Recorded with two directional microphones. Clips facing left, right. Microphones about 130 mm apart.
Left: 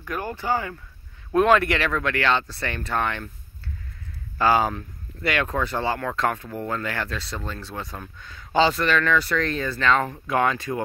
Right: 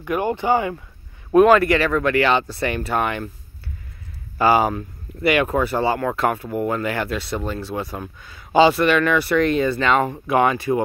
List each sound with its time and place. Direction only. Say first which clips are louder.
0.0 s speech: right 8 dB; 15° right (ahead or behind)
1.3 s speech: right 5 dB; 5° right (ahead or behind)
4.4 s speech: right 4 dB; 10° right (ahead or behind)